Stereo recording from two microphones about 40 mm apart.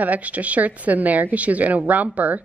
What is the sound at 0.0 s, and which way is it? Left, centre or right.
A woman's voice, right.